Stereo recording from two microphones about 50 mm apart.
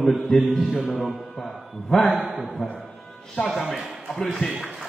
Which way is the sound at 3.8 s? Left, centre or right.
Centre.